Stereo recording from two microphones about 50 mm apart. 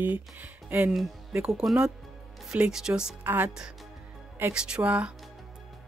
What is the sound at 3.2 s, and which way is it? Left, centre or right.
Speech, right.